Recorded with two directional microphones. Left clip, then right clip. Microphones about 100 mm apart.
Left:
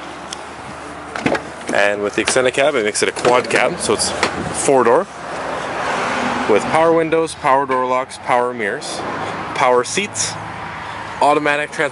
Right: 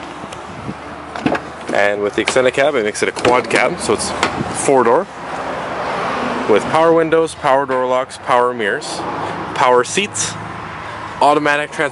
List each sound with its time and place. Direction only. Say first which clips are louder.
1.3 s a sound: even; 25° left (ahead or behind)
1.8 s speech: right 1 dB; 10° left (ahead or behind)
5.8 s vehicle: left 1 dB; 35° left (ahead or behind)
6.7 s speech: right 3 dB; centre (ahead or behind)